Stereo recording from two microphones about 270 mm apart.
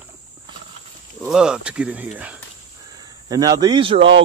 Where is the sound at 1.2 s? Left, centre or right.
Centre.